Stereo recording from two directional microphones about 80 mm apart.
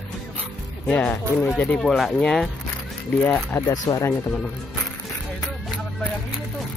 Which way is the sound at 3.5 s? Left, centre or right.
Left.